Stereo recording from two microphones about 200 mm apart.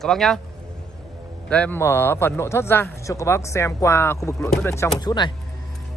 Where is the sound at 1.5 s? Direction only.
5° left (ahead or behind).